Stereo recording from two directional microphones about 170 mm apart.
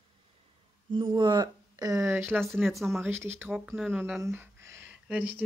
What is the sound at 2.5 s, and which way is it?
Speech, centre (ahead or behind).